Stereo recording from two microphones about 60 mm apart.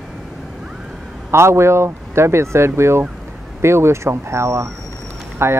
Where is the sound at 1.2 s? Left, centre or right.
Right.